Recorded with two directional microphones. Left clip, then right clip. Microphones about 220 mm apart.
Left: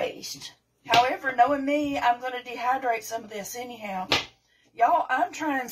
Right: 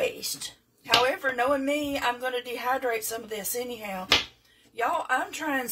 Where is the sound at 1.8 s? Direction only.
30° right (ahead or behind).